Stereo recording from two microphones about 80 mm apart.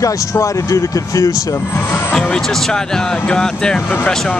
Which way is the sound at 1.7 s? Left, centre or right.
Left.